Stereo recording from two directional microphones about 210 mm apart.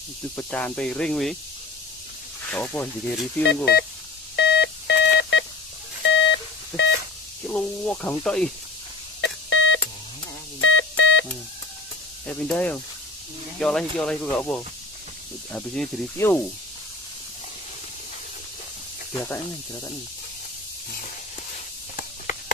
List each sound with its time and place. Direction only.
0.4 s speech: 5° left (ahead or behind)
2.5 s speech: 10° left (ahead or behind)
4.4 s telephone dialing: 55° left (ahead or behind)
6.0 s beep: 60° left (ahead or behind)
7.4 s speech: 5° left (ahead or behind)
9.2 s beep: 60° left (ahead or behind)
10.6 s telephone dialing: 65° left (ahead or behind)
12.3 s speech: 5° left (ahead or behind)
19.1 s speech: 10° left (ahead or behind)
21.9 s a sound: 40° left (ahead or behind)